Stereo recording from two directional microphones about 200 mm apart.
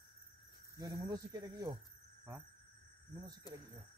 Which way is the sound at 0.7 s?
20° right (ahead or behind).